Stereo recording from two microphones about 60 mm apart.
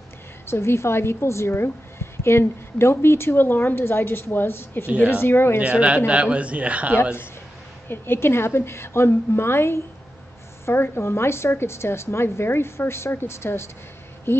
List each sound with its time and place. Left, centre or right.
0.5 s a woman's voice: left
5.6 s speech: right
7.9 s a woman's voice: left